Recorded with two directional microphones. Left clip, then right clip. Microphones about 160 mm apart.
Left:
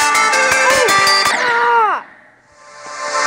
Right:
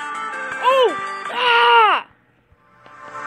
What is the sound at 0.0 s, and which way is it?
Music, 45° left (ahead or behind).